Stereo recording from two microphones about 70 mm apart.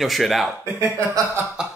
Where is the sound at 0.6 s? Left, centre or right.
Right.